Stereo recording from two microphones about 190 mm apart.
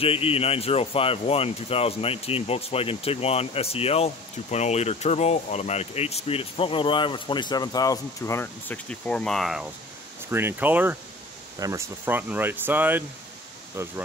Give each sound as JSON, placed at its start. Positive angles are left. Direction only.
{"t": 0.0, "sound": "speech", "side_deg": 30}